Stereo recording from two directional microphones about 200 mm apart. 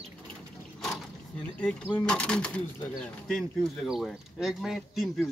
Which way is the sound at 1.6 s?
5° left (ahead or behind).